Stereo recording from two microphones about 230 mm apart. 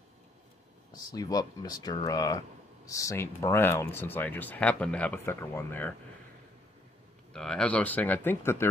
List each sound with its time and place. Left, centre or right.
1.1 s speech: centre
7.3 s speech: centre